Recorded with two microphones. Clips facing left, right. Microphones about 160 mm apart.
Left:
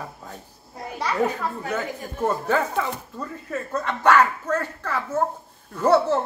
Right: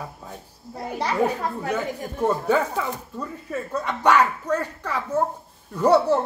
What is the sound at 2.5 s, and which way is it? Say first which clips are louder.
Speech: right 1 dB; 10° right (ahead or behind).